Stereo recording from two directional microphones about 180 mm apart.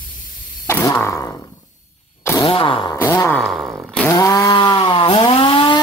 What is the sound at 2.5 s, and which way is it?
Fart, 30° left (ahead or behind).